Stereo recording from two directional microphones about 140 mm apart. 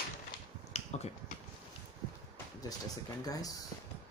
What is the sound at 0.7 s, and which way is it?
Finger snapping, 50° left (ahead or behind).